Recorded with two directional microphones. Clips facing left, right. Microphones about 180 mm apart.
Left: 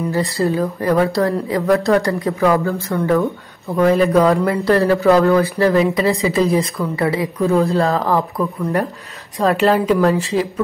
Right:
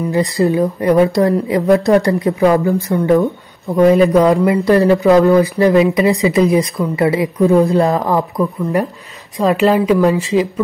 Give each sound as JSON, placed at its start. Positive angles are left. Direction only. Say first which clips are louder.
{"t": 0.1, "sound": "a woman's voice", "louder": "right 6 dB", "side_deg": -15}
{"t": 8.2, "sound": "a woman's voice", "louder": "right 3 dB", "side_deg": -5}